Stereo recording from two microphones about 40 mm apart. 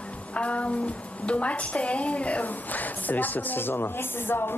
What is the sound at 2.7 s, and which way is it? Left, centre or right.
Speech, left.